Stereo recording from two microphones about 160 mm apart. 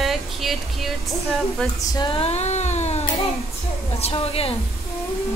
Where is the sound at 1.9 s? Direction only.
30° left (ahead or behind).